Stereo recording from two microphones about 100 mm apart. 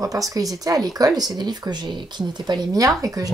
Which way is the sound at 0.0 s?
35° right (ahead or behind).